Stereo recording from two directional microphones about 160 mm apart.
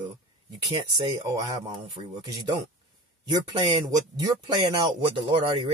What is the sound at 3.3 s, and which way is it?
Speech, 30° right (ahead or behind).